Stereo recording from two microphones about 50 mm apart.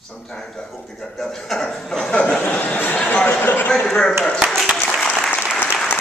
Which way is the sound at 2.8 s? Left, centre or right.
Left.